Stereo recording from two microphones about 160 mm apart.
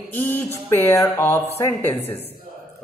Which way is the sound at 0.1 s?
10° left (ahead or behind).